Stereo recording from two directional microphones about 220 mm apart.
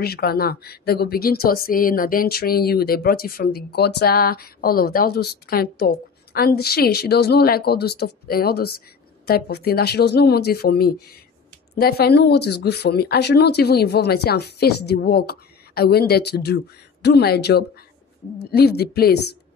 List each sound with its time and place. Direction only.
0.0 s speech: 45° left (ahead or behind)